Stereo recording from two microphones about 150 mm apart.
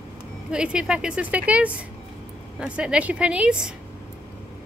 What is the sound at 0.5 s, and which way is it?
Speech, 5° right (ahead or behind).